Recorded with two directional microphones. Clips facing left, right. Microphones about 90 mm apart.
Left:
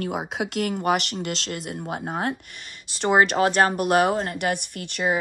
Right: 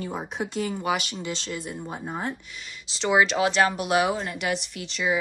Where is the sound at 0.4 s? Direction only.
85° left.